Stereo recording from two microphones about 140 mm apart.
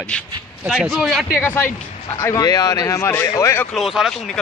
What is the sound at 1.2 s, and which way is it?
Speech, 15° left (ahead or behind).